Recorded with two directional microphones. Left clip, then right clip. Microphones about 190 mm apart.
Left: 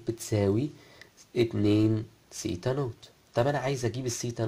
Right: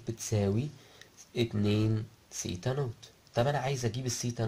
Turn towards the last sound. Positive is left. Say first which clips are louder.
# left 3 dB
turn(degrees=20)  # may be behind; listen again after turning